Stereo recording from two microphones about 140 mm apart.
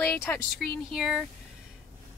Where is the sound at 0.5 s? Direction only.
Centre (ahead or behind).